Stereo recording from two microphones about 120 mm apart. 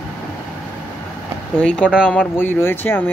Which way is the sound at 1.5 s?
10° left (ahead or behind).